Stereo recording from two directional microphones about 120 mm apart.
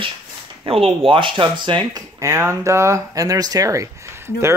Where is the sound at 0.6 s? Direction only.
50° right (ahead or behind).